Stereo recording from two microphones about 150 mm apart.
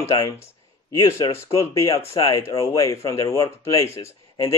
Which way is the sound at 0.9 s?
25° left (ahead or behind).